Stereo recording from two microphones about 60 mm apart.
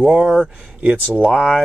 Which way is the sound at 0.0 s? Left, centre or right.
Centre.